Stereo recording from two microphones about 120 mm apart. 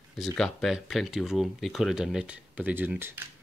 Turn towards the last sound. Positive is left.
turn(degrees=-20)  # may be behind; listen again after turning